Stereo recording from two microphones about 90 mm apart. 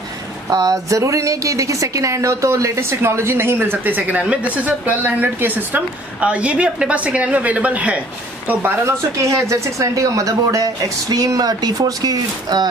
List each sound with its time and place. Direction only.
0.5 s a woman's voice: 45° right (ahead or behind); by 8.9 s 25° right (ahead or behind)
9.1 s speech: 35° right (ahead or behind)